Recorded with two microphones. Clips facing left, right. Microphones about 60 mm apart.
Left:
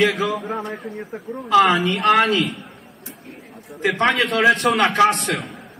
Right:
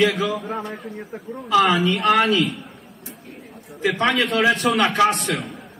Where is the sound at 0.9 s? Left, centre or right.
Centre.